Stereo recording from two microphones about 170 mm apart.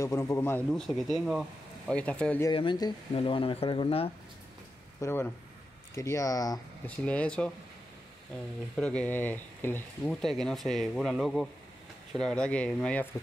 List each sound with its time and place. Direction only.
0.0 s speech: 15° left (ahead or behind)
0.7 s speech: centre (ahead or behind)
2.5 s speech: 30° left (ahead or behind)
5.0 s speech: 15° left (ahead or behind)
7.1 s speech: 5° left (ahead or behind)
8.7 s speech: 5° left (ahead or behind)